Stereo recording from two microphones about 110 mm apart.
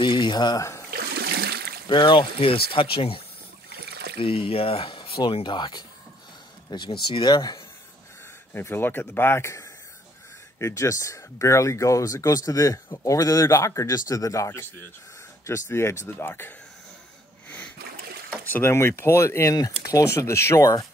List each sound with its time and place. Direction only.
0.0 s speech: 45° left (ahead or behind)
1.9 s speech: 45° left (ahead or behind)
8.5 s speech: 20° left (ahead or behind)
17.5 s a sound: 15° left (ahead or behind)
18.5 s speech: 20° left (ahead or behind)